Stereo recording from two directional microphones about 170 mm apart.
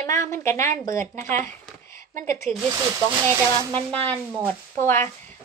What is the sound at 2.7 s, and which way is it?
Speech, 20° right (ahead or behind).